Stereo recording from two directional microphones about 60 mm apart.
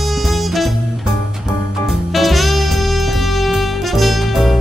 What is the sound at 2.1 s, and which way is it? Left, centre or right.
Music, centre.